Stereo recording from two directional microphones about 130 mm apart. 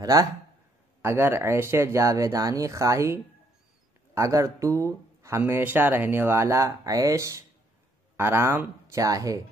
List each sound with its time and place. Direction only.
0.0 s speech: 25° right (ahead or behind)